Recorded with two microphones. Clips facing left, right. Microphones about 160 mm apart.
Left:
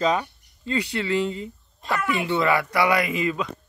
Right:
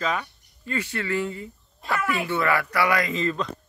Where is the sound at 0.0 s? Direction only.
25° left (ahead or behind); by 3.4 s 10° left (ahead or behind).